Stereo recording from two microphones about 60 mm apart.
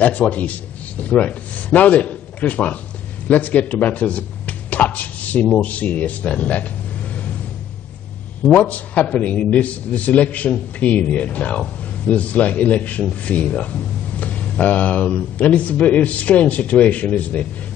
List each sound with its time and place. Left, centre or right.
0.0 s a man's voice: left
8.5 s a man's voice: left